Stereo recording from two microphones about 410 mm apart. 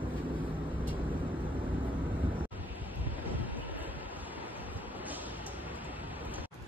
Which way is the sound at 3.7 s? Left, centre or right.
Centre.